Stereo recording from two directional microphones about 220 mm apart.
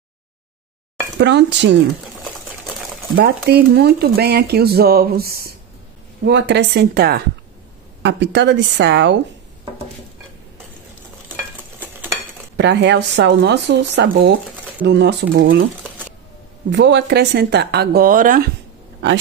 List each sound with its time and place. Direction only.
1.1 s speech: 50° right (ahead or behind)
3.4 s speech: 45° right (ahead or behind)
11.8 s stir: 10° right (ahead or behind)
12.5 s speech: 50° right (ahead or behind)
16.7 s speech: 55° right (ahead or behind)